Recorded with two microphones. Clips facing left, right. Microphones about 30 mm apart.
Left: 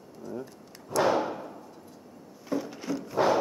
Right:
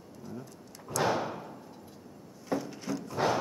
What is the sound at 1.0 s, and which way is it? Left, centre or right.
Thump, centre.